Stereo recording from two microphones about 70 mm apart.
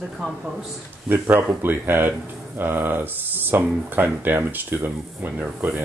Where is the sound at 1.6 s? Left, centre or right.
Right.